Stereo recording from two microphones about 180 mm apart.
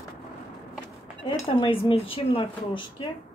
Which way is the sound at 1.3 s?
30° left (ahead or behind).